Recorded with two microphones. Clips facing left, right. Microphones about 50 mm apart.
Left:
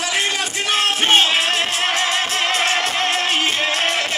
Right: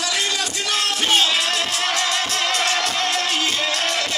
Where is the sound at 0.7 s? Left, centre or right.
Left.